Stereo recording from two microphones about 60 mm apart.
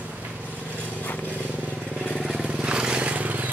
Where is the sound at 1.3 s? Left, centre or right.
Right.